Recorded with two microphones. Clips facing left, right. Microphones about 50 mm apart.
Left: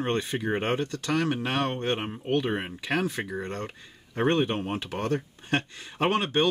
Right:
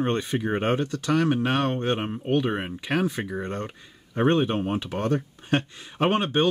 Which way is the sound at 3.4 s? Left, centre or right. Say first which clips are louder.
Right 3 dB; right.